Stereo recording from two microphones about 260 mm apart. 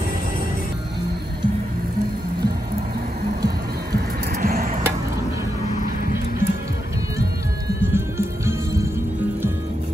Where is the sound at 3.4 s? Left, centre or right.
Right.